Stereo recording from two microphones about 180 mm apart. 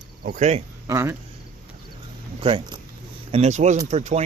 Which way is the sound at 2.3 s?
30° right (ahead or behind).